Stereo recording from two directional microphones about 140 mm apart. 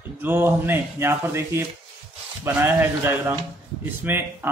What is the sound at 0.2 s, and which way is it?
Speech, 15° right (ahead or behind).